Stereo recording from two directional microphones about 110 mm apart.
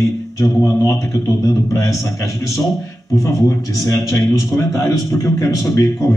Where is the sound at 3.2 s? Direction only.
30° left (ahead or behind).